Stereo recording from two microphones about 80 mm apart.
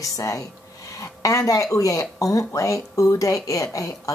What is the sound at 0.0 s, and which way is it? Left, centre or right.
Speech, left.